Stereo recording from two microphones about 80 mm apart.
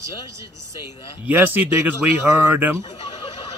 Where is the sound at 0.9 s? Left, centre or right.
Left.